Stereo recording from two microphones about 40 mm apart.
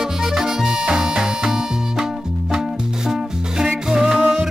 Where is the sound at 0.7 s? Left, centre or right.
Right.